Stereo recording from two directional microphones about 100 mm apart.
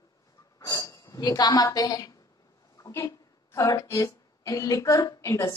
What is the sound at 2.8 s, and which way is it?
Speech, 30° left (ahead or behind).